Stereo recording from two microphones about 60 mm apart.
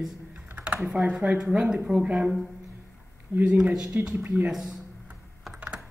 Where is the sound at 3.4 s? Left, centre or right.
Centre.